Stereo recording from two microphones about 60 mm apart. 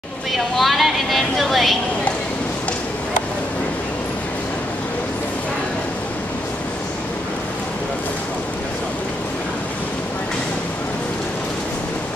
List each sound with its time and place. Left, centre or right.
0.3 s speech: centre